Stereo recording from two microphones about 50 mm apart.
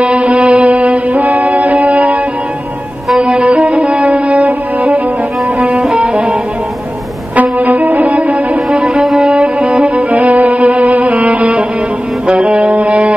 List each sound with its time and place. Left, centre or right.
0.0 s music: right
3.2 s music: right
3.9 s music: right
5.6 s music: centre
7.3 s music: right
8.9 s music: centre
9.6 s music: right